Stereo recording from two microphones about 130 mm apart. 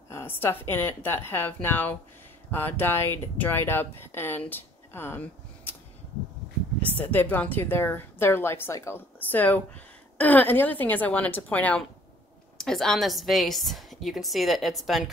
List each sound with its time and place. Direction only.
0.1 s speech: 15° left (ahead or behind)
6.8 s a woman's voice: 10° left (ahead or behind)